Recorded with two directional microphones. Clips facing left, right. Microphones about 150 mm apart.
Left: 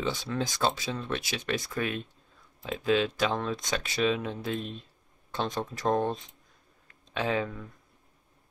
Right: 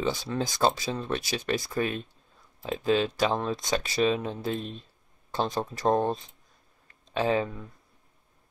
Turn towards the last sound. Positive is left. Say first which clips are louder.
# right 4 dB
turn(degrees=-35)  # may be behind; listen again after turning